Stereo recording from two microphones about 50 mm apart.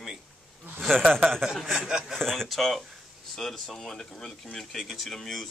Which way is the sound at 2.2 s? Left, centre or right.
Centre.